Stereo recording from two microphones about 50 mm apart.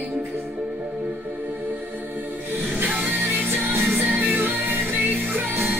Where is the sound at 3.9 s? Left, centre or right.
Right.